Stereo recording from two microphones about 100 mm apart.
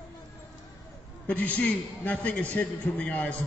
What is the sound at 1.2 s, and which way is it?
A man's voice, 15° left (ahead or behind).